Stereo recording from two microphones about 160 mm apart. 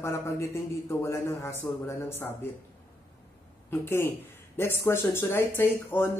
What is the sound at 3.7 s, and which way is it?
Speech, 15° left (ahead or behind).